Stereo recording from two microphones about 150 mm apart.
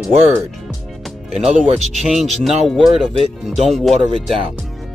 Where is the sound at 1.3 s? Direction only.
Centre (ahead or behind).